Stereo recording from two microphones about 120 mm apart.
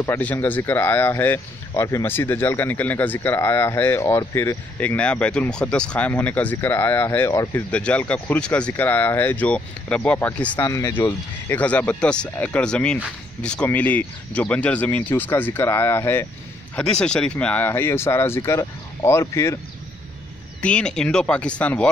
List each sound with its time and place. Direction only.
0.0 s speech: 15° left (ahead or behind)
4.7 s speech: 10° left (ahead or behind)
7.5 s speech: 10° left (ahead or behind)
10.6 s speech: 25° left (ahead or behind)
16.7 s speech: 5° left (ahead or behind); by 19.6 s 25° left (ahead or behind)
20.6 s speech: 10° left (ahead or behind)